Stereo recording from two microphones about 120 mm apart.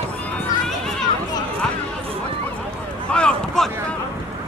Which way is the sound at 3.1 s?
10° left (ahead or behind).